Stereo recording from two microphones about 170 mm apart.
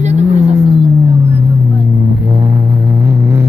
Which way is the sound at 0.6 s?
25° right (ahead or behind).